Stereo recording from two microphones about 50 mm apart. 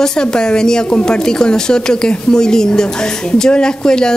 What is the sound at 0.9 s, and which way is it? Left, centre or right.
A woman's voice, left.